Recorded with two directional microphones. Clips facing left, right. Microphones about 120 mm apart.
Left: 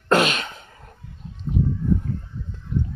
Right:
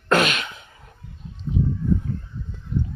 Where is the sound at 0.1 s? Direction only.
30° left (ahead or behind).